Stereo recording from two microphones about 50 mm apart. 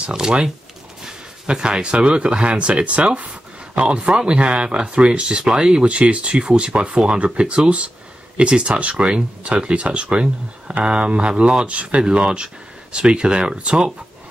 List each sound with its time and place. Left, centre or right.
0.0 s speech: centre